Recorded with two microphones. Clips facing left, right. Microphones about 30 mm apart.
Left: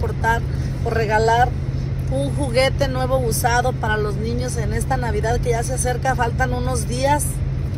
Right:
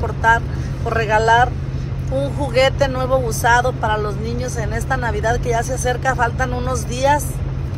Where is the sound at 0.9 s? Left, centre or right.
Right.